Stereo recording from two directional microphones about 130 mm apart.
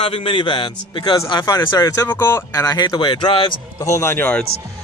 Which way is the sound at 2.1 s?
20° left (ahead or behind).